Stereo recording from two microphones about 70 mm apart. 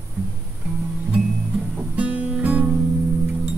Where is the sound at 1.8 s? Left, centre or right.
Right.